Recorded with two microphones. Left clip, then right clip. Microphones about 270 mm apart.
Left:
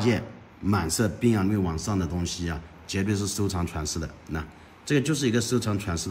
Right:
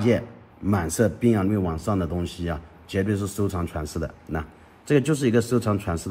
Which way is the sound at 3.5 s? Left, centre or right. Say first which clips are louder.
Right 1 dB; centre.